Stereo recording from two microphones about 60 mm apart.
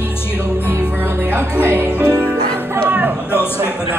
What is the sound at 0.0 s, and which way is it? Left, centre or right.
Music, left.